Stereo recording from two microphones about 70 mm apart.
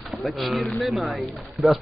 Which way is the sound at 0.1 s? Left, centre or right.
Centre.